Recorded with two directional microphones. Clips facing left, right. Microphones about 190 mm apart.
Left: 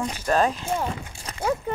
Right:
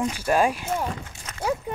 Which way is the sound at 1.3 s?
35° left (ahead or behind).